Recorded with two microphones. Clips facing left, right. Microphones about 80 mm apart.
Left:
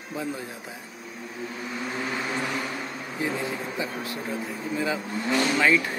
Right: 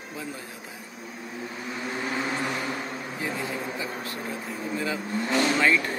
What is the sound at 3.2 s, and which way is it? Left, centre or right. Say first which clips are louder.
Speech: left 3 dB; left.